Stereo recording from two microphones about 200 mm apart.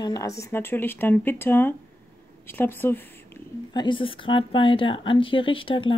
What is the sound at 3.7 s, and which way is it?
A woman's voice, 25° left (ahead or behind).